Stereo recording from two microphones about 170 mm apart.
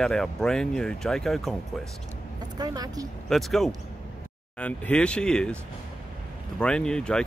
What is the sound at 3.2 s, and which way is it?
Speech, centre (ahead or behind).